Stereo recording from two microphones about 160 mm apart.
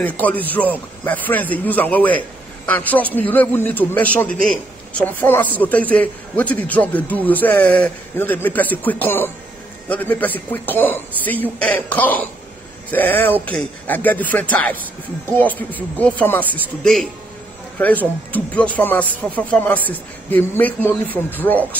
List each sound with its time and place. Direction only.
0.0 s a man's voice: 10° left (ahead or behind)